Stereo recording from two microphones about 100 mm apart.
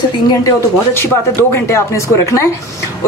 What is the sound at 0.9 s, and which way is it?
A woman's voice, 25° left (ahead or behind).